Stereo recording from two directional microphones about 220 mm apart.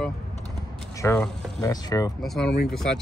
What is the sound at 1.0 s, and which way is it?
Speech, 10° left (ahead or behind).